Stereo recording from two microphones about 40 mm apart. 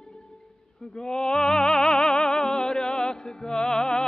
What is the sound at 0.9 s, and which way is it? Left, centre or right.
Music, centre.